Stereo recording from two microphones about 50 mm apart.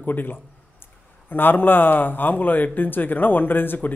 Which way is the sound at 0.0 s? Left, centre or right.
Left.